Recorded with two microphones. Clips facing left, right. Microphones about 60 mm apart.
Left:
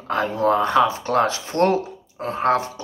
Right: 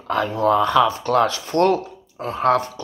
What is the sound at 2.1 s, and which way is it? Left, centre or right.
Speech, left.